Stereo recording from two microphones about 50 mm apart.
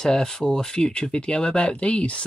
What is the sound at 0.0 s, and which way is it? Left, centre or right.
Speech, centre.